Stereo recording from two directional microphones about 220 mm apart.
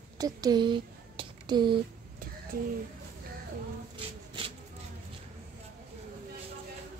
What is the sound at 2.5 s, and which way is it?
Speech, 45° right (ahead or behind).